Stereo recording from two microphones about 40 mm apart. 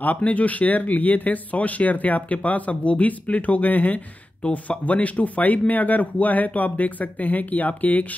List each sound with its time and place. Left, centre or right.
0.0 s speech: left